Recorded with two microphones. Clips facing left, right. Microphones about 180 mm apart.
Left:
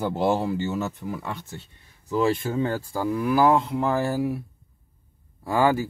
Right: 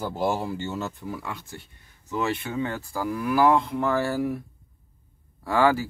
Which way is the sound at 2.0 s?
35° left (ahead or behind).